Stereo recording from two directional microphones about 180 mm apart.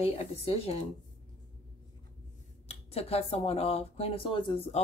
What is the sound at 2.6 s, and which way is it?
Speech, 35° left (ahead or behind).